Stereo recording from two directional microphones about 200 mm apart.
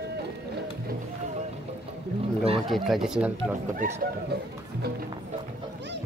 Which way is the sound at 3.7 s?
40° right (ahead or behind).